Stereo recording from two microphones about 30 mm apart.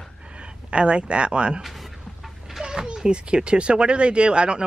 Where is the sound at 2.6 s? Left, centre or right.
Right.